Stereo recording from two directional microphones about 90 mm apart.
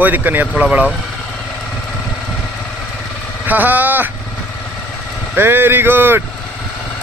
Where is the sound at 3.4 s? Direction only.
20° right (ahead or behind).